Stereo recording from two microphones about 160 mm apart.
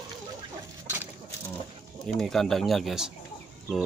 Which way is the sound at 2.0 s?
5° left (ahead or behind).